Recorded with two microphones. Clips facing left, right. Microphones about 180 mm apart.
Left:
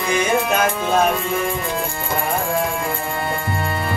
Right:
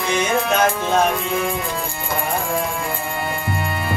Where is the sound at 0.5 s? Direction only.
5° left (ahead or behind).